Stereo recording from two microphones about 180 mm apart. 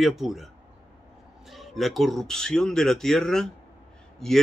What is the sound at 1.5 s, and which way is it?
Speech, centre (ahead or behind).